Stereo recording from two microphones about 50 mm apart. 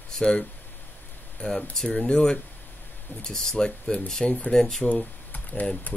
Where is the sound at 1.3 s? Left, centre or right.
Centre.